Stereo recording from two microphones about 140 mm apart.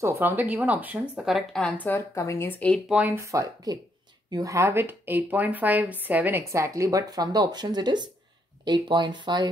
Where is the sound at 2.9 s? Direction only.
10° right (ahead or behind).